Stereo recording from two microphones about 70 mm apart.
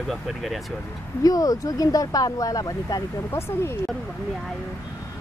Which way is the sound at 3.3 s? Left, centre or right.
Left.